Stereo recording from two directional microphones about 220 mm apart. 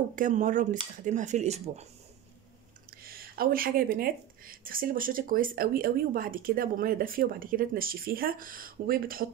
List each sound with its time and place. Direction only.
0.1 s speech: 35° right (ahead or behind)
2.9 s speech: 40° right (ahead or behind)